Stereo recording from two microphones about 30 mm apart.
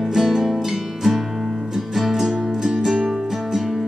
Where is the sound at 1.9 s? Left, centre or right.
Centre.